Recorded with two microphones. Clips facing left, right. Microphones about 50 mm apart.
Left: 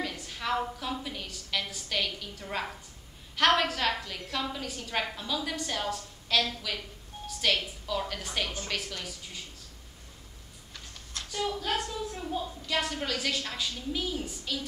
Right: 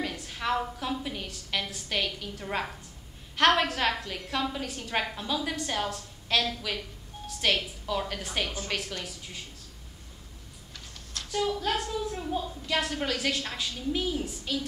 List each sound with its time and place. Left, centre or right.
0.0 s a sound: centre
1.0 s a woman's voice: centre
11.3 s a woman's voice: centre